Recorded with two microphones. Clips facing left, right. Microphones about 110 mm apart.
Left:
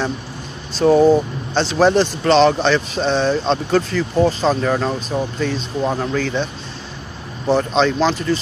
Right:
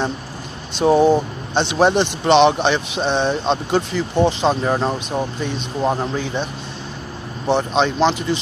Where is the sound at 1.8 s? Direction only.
20° right (ahead or behind).